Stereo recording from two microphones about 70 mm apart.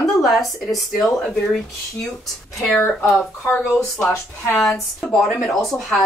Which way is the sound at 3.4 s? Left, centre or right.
Left.